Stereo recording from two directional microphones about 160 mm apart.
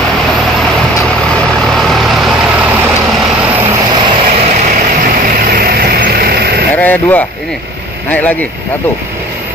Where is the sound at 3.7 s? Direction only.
30° right (ahead or behind); by 6.6 s 75° right (ahead or behind).